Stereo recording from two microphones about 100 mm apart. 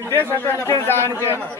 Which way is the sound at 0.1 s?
30° left (ahead or behind).